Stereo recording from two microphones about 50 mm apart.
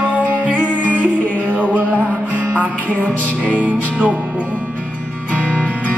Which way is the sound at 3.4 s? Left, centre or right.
Right.